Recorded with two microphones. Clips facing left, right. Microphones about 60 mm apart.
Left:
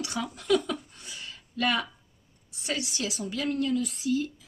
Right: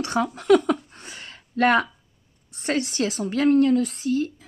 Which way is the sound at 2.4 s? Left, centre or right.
Right.